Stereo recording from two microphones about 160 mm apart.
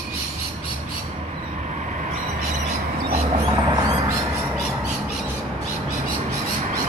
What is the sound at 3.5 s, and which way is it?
Mouse, 30° right (ahead or behind).